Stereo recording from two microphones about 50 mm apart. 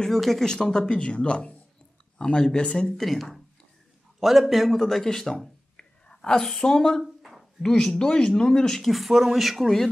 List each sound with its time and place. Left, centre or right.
0.0 s speech: centre
0.7 s speech: centre
3.0 s speech: centre
7.0 s a sound: centre
7.6 s speech: centre
8.9 s speech: centre